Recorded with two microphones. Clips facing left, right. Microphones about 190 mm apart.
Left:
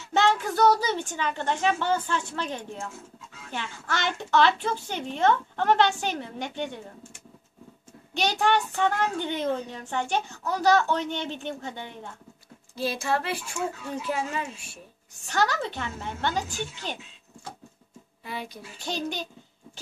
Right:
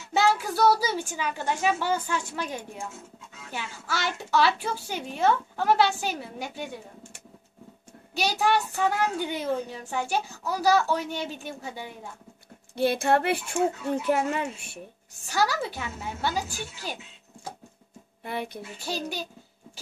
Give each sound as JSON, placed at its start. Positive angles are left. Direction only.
{"t": 0.1, "sound": "a child's voice", "side_deg": -5}
{"t": 8.1, "sound": "a child's voice", "side_deg": -5}
{"t": 12.7, "sound": "speech", "side_deg": -60}
{"t": 15.2, "sound": "a child's voice", "side_deg": -10}
{"t": 18.2, "sound": "speech", "side_deg": -55}
{"t": 18.8, "sound": "a child's voice", "side_deg": -5}